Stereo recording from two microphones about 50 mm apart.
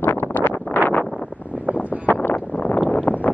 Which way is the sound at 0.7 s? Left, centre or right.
Left.